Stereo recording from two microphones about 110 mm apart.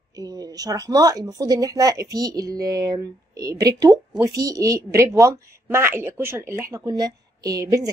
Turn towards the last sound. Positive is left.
turn(degrees=-35)  # may be behind; listen again after turning